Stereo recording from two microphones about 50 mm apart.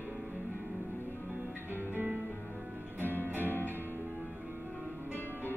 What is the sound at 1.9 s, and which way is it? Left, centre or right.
Music, right.